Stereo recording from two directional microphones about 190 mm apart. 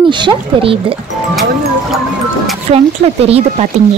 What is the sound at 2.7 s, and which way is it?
Speech, 30° right (ahead or behind).